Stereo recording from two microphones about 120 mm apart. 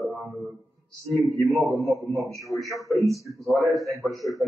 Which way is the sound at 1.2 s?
Centre (ahead or behind).